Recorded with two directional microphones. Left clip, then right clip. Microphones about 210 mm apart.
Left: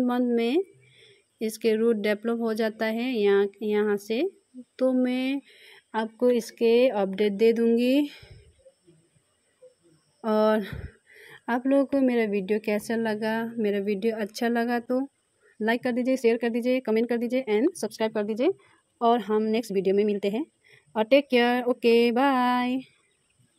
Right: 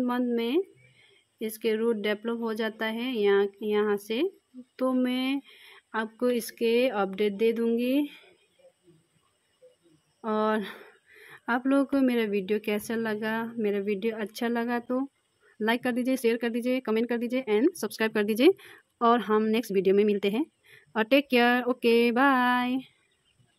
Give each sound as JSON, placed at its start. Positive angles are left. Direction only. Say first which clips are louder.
{"t": 0.0, "sound": "speech", "louder": "left 3 dB", "side_deg": 5}
{"t": 10.2, "sound": "speech", "louder": "left 4 dB", "side_deg": 5}
{"t": 18.1, "sound": "speech", "louder": "right 6 dB", "side_deg": -20}
{"t": 18.9, "sound": "speech", "louder": "even", "side_deg": -10}